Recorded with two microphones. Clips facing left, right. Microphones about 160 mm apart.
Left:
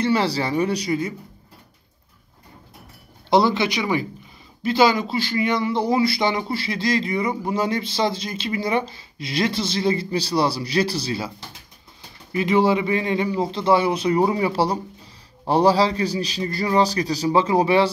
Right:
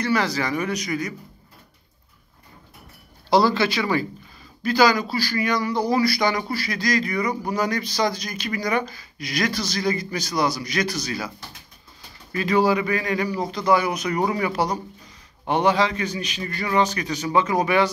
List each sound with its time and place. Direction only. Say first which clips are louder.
0.0 s a man's voice: left 2 dB; 30° left (ahead or behind)
3.3 s a man's voice: left 1 dB; 20° left (ahead or behind)